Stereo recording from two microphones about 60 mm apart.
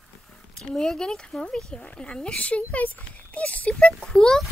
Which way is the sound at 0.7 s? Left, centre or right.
Centre.